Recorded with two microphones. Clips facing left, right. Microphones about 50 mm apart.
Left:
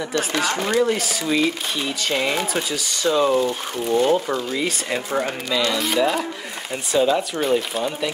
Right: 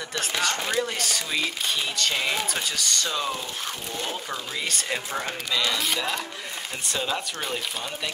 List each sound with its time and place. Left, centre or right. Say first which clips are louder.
0.2 s speech: left 2 dB; centre